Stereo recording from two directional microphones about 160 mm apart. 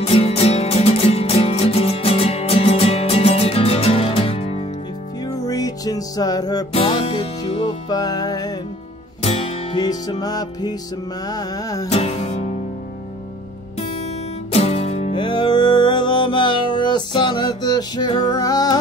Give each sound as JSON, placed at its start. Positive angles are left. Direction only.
{"t": 0.0, "sound": "music", "side_deg": 40}
{"t": 5.2, "sound": "music", "side_deg": 25}
{"t": 6.7, "sound": "music", "side_deg": 35}
{"t": 7.9, "sound": "music", "side_deg": 25}
{"t": 9.2, "sound": "music", "side_deg": 40}
{"t": 9.8, "sound": "music", "side_deg": 25}
{"t": 11.9, "sound": "music", "side_deg": 40}
{"t": 14.5, "sound": "music", "side_deg": 40}